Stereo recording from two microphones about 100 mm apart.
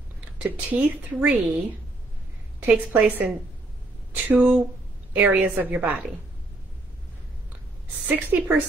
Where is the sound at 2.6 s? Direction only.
15° right (ahead or behind).